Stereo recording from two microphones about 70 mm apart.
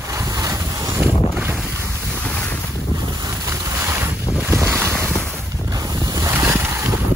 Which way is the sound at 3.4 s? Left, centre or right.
Right.